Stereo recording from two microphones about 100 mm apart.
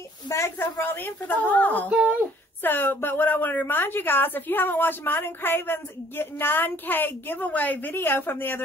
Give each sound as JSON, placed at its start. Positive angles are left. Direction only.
{"t": 0.3, "sound": "a woman's voice", "side_deg": 25}
{"t": 1.9, "sound": "speech", "side_deg": -15}
{"t": 2.6, "sound": "a woman's voice", "side_deg": 20}